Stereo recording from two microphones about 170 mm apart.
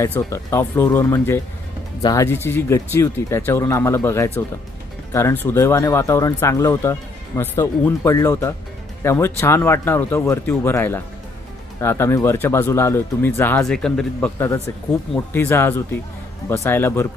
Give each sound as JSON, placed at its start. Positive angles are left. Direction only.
{"t": 0.0, "sound": "speech", "side_deg": 15}
{"t": 15.3, "sound": "speech", "side_deg": 15}